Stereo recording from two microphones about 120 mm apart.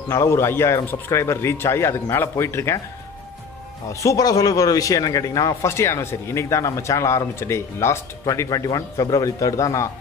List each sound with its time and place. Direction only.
0.1 s a man's voice: 20° left (ahead or behind)
3.9 s a man's voice: 25° left (ahead or behind)